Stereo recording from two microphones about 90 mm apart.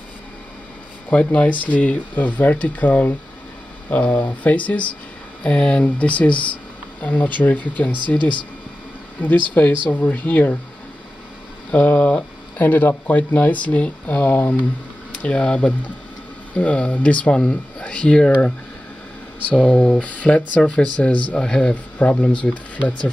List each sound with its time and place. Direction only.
1.1 s speech: 15° left (ahead or behind)
8.2 s speech: 60° left (ahead or behind)
9.5 s speech: 15° left (ahead or behind)
11.7 s speech: 15° left (ahead or behind)
19.5 s speech: 10° left (ahead or behind)